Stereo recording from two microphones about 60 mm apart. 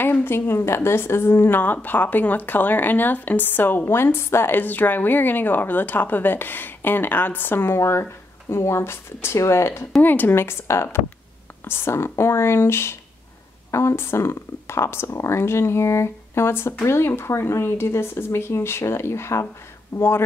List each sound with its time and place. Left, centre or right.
0.0 s a woman's voice: left
10.0 s a woman's voice: left